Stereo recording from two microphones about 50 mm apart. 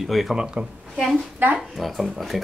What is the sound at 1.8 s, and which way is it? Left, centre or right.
Speech, centre.